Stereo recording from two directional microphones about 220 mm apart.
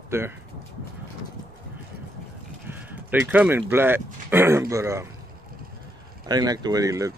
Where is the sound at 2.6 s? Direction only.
10° right (ahead or behind).